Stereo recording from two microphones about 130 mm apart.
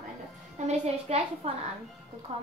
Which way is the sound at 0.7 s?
55° right (ahead or behind).